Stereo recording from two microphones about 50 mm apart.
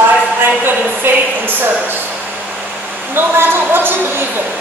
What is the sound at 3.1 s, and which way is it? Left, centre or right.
A woman's voice, right.